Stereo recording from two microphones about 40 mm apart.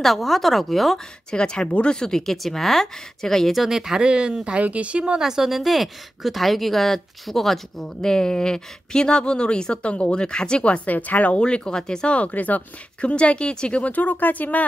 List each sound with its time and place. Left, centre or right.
0.0 s a woman's voice: centre
0.9 s speech: left
3.5 s speech: centre
4.6 s speech: right
5.2 s a woman's voice: centre
8.0 s speech: centre
9.8 s speech: left
10.9 s speech: left
11.3 s speech: left
12.2 s speech: left
13.1 s speech: left
13.9 s speech: left